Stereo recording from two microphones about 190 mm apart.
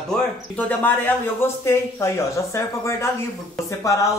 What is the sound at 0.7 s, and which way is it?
Speech, 10° left (ahead or behind).